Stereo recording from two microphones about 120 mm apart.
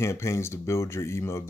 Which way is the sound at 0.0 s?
25° left (ahead or behind).